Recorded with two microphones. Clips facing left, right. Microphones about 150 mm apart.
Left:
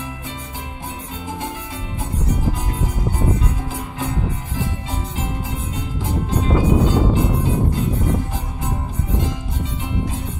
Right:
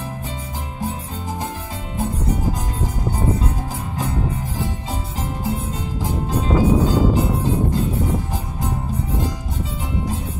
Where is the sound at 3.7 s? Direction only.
40° right (ahead or behind).